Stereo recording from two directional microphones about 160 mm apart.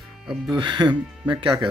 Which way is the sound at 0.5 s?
30° right (ahead or behind).